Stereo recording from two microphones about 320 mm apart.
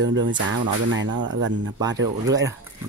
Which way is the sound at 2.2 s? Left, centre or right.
Centre.